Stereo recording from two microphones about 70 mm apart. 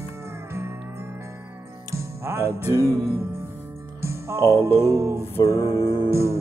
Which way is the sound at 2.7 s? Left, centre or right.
Left.